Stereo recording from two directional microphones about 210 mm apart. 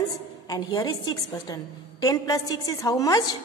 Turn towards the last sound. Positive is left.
turn(degrees=15)  # may be behind; listen again after turning